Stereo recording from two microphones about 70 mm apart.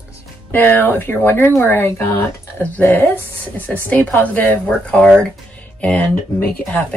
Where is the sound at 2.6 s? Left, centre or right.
Left.